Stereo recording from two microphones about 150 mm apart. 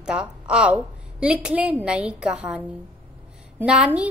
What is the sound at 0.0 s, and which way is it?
A woman's voice, 5° right (ahead or behind).